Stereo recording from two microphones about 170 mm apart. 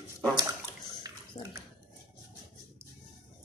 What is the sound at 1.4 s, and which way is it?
Speech, 25° left (ahead or behind).